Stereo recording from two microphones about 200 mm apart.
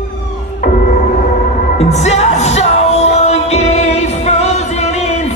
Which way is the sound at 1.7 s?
35° left (ahead or behind).